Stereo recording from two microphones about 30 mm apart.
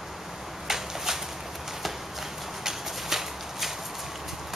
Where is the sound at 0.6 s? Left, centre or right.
Centre.